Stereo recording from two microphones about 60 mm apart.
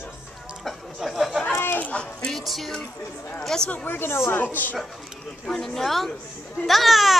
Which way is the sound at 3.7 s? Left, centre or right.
Left.